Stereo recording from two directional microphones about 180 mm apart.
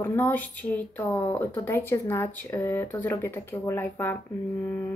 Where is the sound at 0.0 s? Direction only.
10° left (ahead or behind).